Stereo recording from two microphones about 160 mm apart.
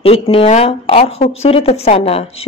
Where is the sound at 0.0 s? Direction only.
35° left (ahead or behind).